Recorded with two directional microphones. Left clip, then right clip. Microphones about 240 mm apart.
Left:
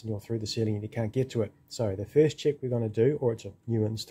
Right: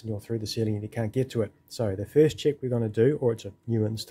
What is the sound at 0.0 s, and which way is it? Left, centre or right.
Speech, centre.